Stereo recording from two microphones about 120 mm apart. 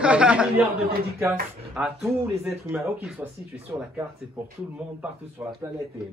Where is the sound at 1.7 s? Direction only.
Centre (ahead or behind).